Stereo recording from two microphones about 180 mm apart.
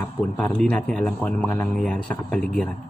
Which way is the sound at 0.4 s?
5° left (ahead or behind).